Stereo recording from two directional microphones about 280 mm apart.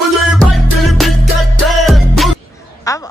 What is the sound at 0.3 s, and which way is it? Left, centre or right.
Music, centre.